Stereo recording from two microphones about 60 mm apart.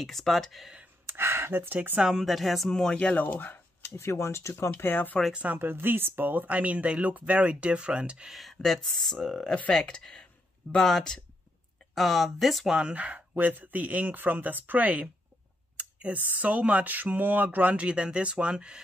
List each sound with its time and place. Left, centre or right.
0.0 s speech: centre
1.0 s speech: right
2.1 s speech: centre
3.2 s speech: left
3.9 s speech: left
5.3 s speech: right
5.6 s speech: right; by 8.3 s centre
8.3 s speech: centre
12.7 s speech: centre
15.8 s a sound: right
16.3 s speech: right